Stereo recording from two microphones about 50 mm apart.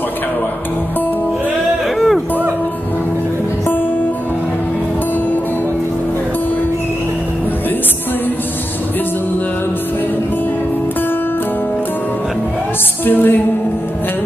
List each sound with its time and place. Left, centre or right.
2.0 s music: centre
13.0 s music: left